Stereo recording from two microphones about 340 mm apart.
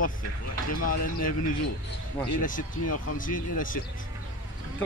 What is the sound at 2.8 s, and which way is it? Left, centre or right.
Speech, left.